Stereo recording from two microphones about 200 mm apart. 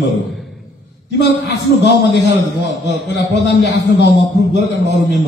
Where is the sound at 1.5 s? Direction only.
60° left (ahead or behind).